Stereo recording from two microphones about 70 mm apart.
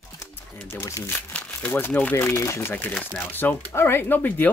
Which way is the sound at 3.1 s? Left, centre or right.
Left.